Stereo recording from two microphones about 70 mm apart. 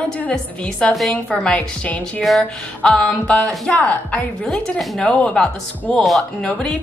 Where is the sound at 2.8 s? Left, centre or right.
Centre.